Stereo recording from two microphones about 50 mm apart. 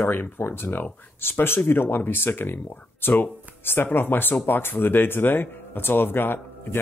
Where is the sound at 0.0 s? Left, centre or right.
Left.